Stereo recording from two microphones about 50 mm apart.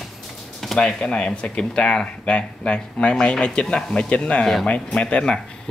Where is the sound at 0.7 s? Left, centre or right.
Centre.